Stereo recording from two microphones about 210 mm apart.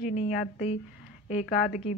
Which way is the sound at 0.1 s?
30° left (ahead or behind).